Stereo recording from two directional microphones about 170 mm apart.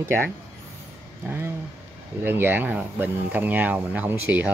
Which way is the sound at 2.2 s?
10° right (ahead or behind).